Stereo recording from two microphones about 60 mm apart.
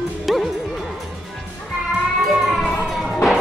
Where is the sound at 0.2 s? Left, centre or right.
Centre.